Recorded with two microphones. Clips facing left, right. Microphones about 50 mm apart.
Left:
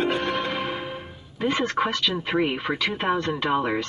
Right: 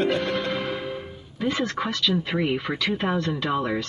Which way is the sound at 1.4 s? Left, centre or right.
Left.